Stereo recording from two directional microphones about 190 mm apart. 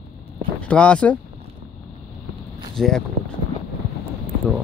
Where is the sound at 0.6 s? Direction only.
5° left (ahead or behind).